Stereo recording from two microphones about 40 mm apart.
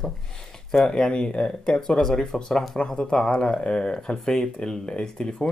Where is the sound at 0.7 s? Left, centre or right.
Centre.